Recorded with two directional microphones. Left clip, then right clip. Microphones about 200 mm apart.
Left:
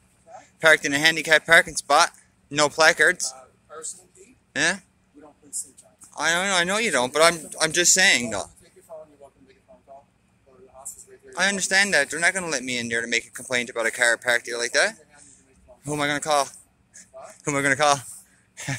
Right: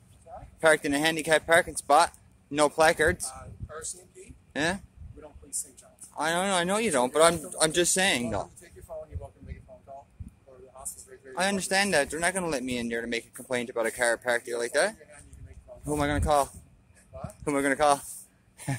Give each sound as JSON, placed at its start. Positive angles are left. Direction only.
{"t": 0.6, "sound": "speech", "side_deg": -15}
{"t": 4.5, "sound": "speech", "side_deg": -15}
{"t": 6.1, "sound": "speech", "side_deg": -15}
{"t": 11.3, "sound": "speech", "side_deg": -20}